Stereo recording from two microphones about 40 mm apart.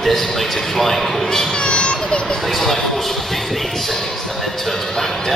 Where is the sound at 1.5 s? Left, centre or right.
Left.